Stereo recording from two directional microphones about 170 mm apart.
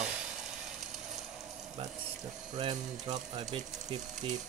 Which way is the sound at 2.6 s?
30° right (ahead or behind).